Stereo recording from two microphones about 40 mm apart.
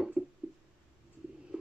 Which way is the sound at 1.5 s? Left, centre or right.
Centre.